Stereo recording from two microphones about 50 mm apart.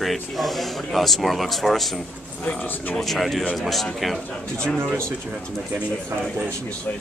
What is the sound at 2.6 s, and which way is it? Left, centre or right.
Speech, left.